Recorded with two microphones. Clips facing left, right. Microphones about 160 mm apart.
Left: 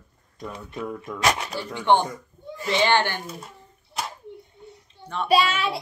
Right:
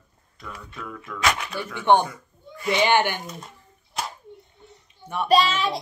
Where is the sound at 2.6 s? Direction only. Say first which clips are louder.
Right 1 dB; 15° right (ahead or behind).